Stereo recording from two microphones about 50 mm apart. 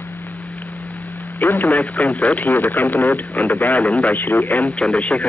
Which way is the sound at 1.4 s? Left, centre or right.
Left.